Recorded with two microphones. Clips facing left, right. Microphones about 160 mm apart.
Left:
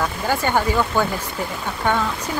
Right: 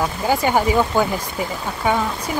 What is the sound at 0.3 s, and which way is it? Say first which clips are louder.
Speech: right 3 dB; 10° right (ahead or behind).